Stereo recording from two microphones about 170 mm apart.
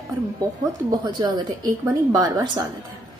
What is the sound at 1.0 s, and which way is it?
A woman's voice, 25° right (ahead or behind).